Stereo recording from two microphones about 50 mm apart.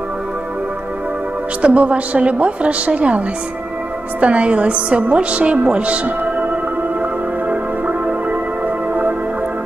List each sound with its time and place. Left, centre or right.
1.6 s a woman's voice: right
4.2 s music: right